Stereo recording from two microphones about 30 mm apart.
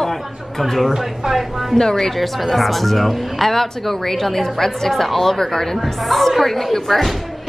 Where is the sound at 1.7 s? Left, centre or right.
Centre.